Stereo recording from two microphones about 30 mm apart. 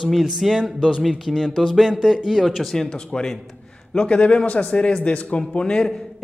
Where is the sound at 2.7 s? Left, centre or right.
Centre.